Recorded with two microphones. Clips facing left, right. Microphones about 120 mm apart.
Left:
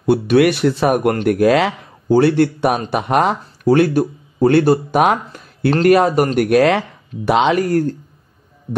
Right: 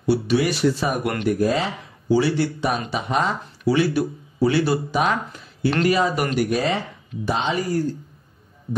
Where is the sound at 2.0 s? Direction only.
55° left (ahead or behind).